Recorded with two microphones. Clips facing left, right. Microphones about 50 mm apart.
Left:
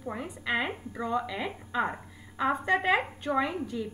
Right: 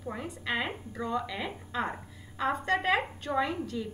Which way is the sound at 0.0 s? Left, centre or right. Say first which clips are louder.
Left 1 dB; centre.